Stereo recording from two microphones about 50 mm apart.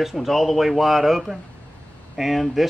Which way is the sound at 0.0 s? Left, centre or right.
Centre.